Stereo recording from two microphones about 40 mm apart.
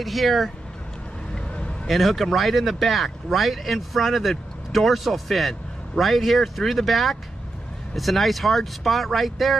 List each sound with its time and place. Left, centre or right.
0.0 s speech: centre
1.9 s speech: centre